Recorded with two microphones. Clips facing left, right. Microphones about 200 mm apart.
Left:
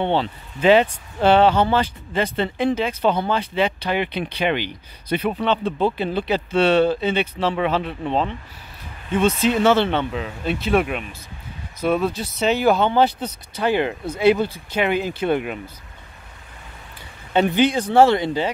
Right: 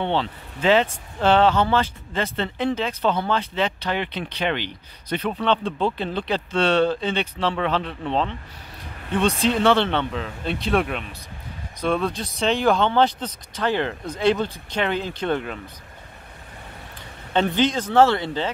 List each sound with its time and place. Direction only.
0.0 s speech: 15° left (ahead or behind)
9.6 s speech: 5° left (ahead or behind)
17.3 s speech: 10° left (ahead or behind)